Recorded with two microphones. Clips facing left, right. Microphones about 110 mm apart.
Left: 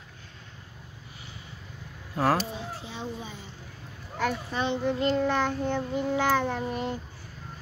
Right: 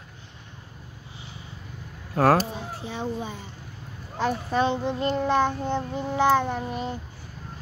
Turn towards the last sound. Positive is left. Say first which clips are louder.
# right 1 dB
turn(degrees=-20)  # may be behind; listen again after turning